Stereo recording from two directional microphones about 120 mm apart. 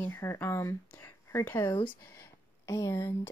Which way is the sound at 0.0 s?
20° left (ahead or behind).